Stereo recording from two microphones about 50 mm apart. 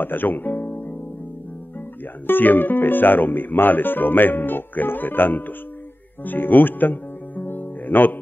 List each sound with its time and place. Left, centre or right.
0.0 s music: left
2.2 s speech: left
6.2 s music: left